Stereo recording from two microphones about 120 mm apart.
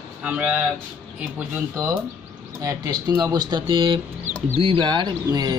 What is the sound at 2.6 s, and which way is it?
Speech, 30° right (ahead or behind).